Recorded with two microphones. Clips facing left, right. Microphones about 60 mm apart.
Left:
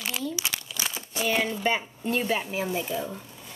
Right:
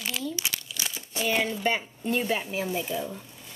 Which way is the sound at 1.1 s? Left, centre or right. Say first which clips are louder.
Even; centre.